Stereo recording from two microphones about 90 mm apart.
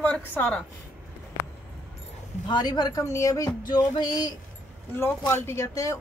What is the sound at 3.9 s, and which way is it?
Speech, 55° left (ahead or behind).